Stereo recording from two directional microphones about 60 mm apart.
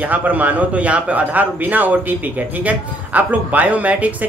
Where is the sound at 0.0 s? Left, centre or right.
Right.